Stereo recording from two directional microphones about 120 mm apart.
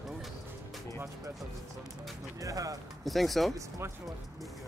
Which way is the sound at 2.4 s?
30° right (ahead or behind).